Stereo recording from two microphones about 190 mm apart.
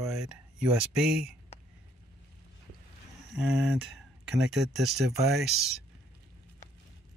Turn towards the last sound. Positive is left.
turn(degrees=0)  # may be behind; listen again after turning